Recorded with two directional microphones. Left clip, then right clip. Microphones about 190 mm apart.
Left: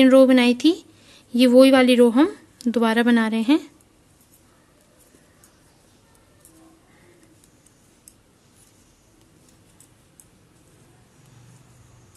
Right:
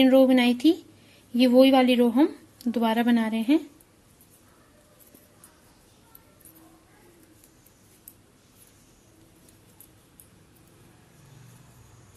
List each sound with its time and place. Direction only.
0.0 s a woman's voice: 30° left (ahead or behind)